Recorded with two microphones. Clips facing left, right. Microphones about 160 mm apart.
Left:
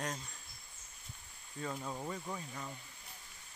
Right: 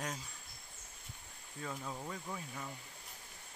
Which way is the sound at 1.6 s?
Centre (ahead or behind).